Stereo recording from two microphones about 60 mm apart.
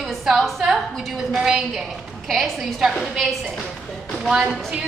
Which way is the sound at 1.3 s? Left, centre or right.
Centre.